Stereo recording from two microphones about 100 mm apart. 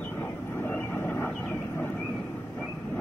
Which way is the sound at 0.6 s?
25° left (ahead or behind).